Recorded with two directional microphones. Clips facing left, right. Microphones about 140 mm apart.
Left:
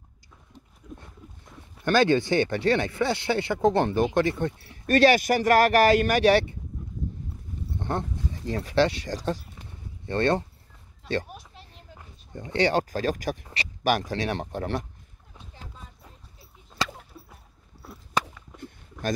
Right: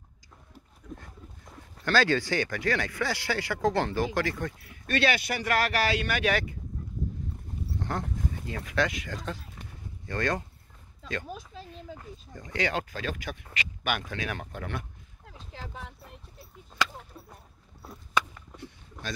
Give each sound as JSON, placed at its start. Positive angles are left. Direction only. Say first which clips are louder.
{"t": 0.8, "sound": "a sound", "louder": "even", "side_deg": 10}
{"t": 1.9, "sound": "speech", "louder": "left 5 dB", "side_deg": 20}
{"t": 4.8, "sound": "speech", "louder": "left 8 dB", "side_deg": 40}
{"t": 7.8, "sound": "speech", "louder": "left 3 dB", "side_deg": 30}
{"t": 12.4, "sound": "speech", "louder": "left 7 dB", "side_deg": 30}
{"t": 15.2, "sound": "boat", "louder": "right 4 dB", "side_deg": -85}
{"t": 18.2, "sound": "whip", "louder": "left 1 dB", "side_deg": 35}
{"t": 18.6, "sound": "a sound", "louder": "left 8 dB", "side_deg": 50}